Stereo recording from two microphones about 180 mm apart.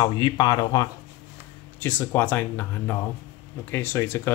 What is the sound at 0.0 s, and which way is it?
Speech, 20° left (ahead or behind).